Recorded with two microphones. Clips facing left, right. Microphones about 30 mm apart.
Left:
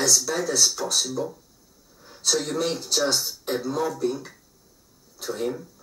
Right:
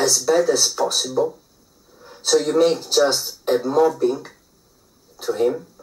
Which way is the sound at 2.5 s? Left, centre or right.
Centre.